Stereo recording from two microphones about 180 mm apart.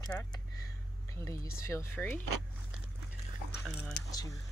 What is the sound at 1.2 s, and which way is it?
Speech, 15° left (ahead or behind).